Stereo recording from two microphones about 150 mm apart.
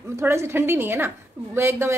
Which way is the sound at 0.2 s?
15° right (ahead or behind).